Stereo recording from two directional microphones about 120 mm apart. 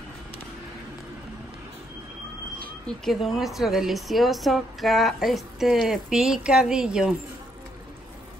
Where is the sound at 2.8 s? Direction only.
Centre (ahead or behind).